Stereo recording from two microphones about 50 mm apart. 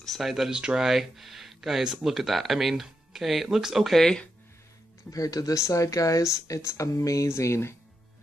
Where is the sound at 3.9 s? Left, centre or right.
Centre.